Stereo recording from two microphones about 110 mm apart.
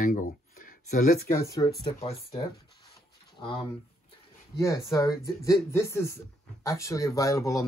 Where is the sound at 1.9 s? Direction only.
65° left (ahead or behind).